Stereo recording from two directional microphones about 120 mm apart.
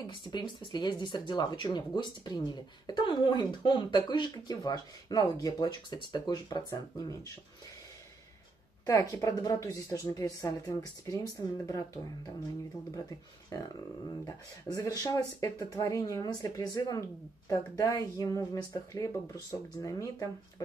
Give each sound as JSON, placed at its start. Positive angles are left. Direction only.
{"t": 0.0, "sound": "speech", "side_deg": 40}
{"t": 8.8, "sound": "speech", "side_deg": 25}
{"t": 14.2, "sound": "speech", "side_deg": 35}